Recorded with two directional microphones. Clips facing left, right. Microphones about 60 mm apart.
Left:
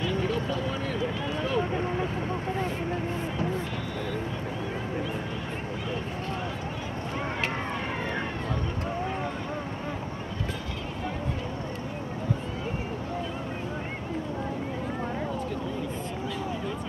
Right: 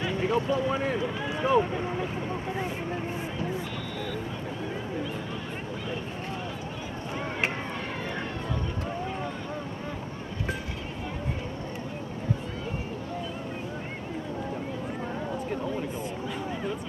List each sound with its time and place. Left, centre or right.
0.0 s speech: right